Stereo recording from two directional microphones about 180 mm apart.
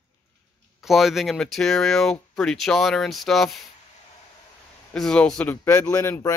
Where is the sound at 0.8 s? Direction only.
Centre (ahead or behind).